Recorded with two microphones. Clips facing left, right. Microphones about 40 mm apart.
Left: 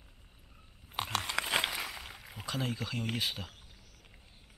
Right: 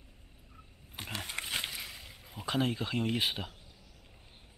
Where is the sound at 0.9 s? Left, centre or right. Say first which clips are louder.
Left 5 dB; left.